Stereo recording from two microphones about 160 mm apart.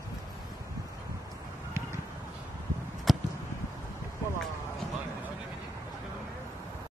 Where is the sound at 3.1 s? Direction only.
Centre (ahead or behind).